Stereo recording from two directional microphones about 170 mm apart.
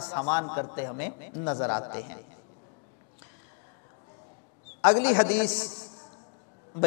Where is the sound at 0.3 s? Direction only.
20° left (ahead or behind).